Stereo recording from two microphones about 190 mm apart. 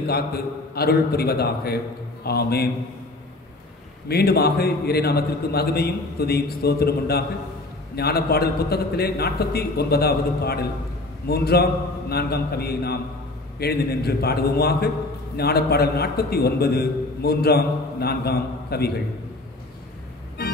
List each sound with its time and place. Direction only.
0.0 s a man's voice: 55° left (ahead or behind)
4.1 s a man's voice: 55° left (ahead or behind)
20.4 s music: 55° left (ahead or behind)